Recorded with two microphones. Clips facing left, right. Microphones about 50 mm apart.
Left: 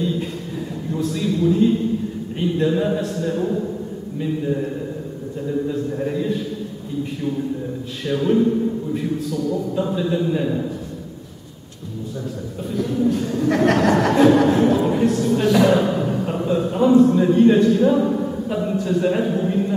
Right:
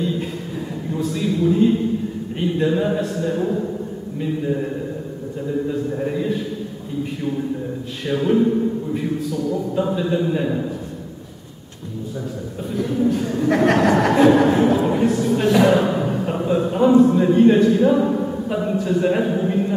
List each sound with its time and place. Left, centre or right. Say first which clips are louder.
0.9 s a man's voice: even; centre
5.7 s speech: even; centre
8.0 s speech: even; centre
12.7 s speech: even; centre